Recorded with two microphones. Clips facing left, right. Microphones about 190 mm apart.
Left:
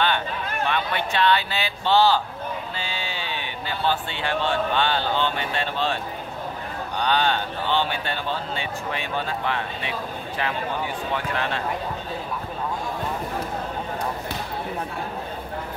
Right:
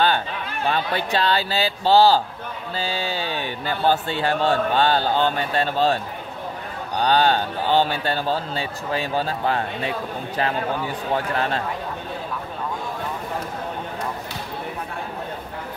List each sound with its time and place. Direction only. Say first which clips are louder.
0.7 s a man's voice: right 4 dB; 35° right (ahead or behind)
7.0 s a man's voice: right 4 dB; 40° right (ahead or behind)